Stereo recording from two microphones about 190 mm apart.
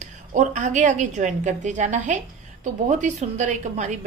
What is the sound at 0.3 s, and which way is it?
A woman's voice, 40° right (ahead or behind).